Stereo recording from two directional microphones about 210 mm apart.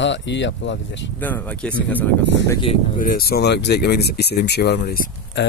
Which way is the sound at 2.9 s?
40° left (ahead or behind).